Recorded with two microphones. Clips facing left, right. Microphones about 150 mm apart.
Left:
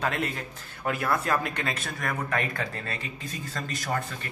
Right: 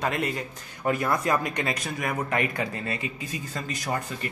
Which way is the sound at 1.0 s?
15° right (ahead or behind).